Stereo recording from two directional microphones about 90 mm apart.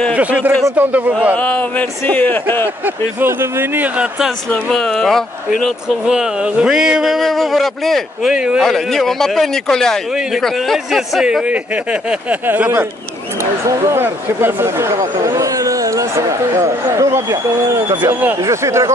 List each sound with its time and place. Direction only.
0.1 s a man's voice: 15° right (ahead or behind)
1.3 s a man's voice: 15° left (ahead or behind)
2.8 s speech: 25° right (ahead or behind)
4.6 s speech: 5° left (ahead or behind)
6.0 s speech: 10° right (ahead or behind)
8.6 s a man's voice: 5° left (ahead or behind); by 12.8 s 25° right (ahead or behind)
13.4 s speech: 35° right (ahead or behind)